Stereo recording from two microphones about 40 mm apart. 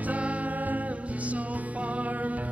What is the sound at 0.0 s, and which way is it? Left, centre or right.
Music, right.